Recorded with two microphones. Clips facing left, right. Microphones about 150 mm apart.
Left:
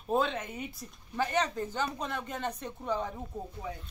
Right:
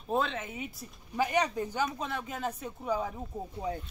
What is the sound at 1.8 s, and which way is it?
Speech, centre (ahead or behind).